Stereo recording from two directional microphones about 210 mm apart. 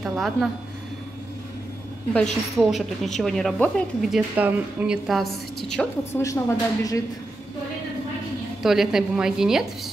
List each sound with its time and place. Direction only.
0.0 s a woman's voice: centre (ahead or behind)
2.5 s speech: centre (ahead or behind)
6.2 s speech: 15° left (ahead or behind)
8.6 s speech: centre (ahead or behind)